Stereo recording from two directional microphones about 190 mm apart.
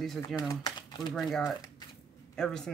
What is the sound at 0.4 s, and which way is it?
Speech, 20° left (ahead or behind).